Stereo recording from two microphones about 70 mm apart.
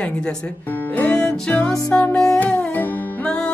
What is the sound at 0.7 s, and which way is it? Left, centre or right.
Music, left.